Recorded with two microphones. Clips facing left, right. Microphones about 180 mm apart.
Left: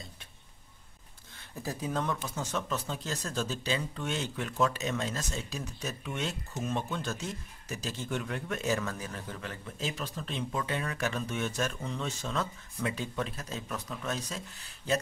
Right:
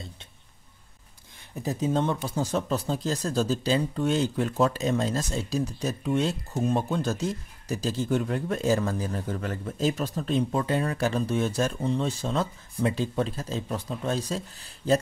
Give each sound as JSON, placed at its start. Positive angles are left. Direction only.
{"t": 1.5, "sound": "speech", "side_deg": -20}